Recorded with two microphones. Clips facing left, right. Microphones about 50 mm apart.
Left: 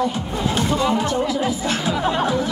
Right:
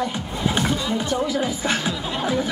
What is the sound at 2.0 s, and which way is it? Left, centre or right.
Speech, left.